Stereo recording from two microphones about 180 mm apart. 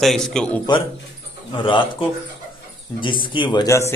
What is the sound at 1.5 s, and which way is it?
Speech, 30° left (ahead or behind).